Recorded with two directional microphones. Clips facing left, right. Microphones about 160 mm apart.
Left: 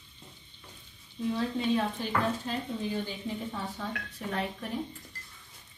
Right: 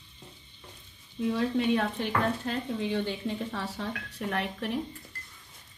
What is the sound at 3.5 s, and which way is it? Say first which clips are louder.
Speech: right 2 dB; 80° right.